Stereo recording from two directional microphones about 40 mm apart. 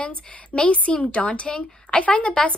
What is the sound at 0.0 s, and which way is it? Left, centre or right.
A woman's voice, left.